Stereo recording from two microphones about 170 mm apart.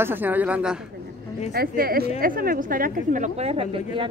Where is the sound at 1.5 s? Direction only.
65° right (ahead or behind).